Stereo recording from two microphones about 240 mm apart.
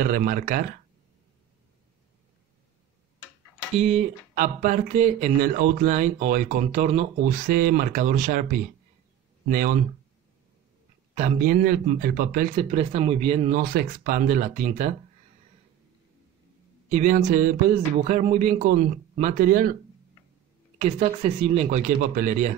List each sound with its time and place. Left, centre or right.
0.0 s speech: right
3.8 s speech: right
11.1 s speech: right
12.5 s speech: right
16.9 s speech: right
20.8 s speech: right